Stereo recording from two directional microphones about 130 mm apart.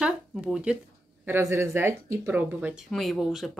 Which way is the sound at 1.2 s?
15° right (ahead or behind).